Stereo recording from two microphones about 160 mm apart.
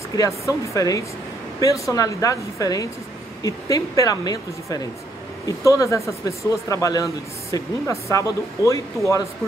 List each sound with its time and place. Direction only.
0.7 s speech: 20° left (ahead or behind)